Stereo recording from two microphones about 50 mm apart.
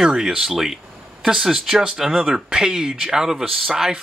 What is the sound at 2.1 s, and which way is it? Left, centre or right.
Speech, centre.